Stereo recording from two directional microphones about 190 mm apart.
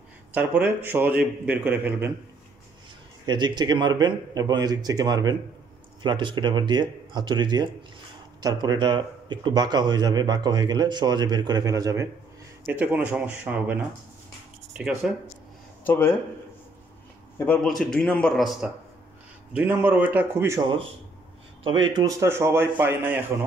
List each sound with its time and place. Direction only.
0.3 s a man's voice: 10° right (ahead or behind)
3.3 s a man's voice: 25° right (ahead or behind)
15.8 s speech: 10° left (ahead or behind)
17.5 s a man's voice: centre (ahead or behind)